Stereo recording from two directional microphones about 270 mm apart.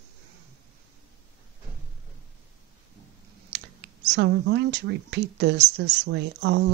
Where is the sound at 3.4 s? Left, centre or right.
Right.